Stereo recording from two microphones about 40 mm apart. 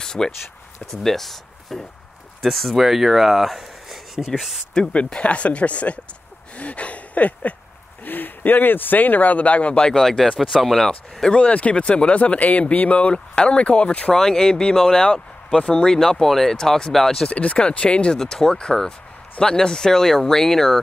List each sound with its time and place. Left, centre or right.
0.0 s a sound: centre
1.0 s speech: centre
4.9 s speech: left
6.5 s a sound: left
8.0 s speech: left
9.9 s speech: centre
10.4 s speech: centre
11.3 s speech: left
14.1 s speech: centre
16.1 s speech: centre
17.3 s speech: left
18.2 s speech: centre